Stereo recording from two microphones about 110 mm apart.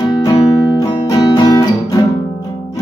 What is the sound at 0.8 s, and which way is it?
Music, 35° left (ahead or behind).